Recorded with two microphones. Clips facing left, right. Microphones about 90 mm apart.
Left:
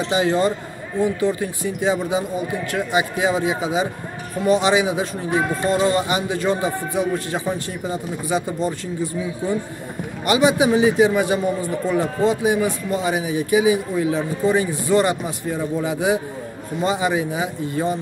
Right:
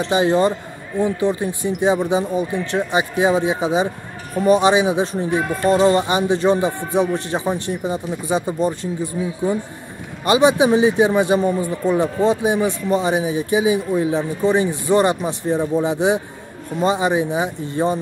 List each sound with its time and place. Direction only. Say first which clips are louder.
0.1 s speech: right 3 dB; 25° right (ahead or behind)